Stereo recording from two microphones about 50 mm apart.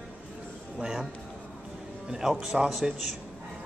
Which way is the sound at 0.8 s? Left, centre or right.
Centre.